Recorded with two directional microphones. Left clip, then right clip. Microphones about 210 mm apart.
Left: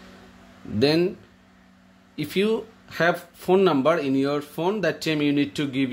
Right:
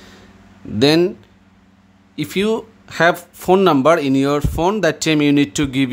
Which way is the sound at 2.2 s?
20° right (ahead or behind).